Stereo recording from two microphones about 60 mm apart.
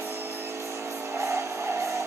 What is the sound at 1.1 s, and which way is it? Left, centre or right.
Music, right.